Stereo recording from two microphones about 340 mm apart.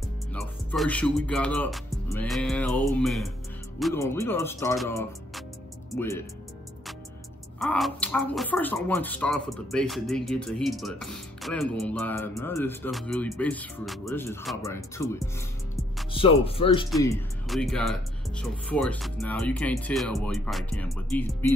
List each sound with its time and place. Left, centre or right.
0.3 s speech: centre
7.5 s speech: centre
16.9 s speech: centre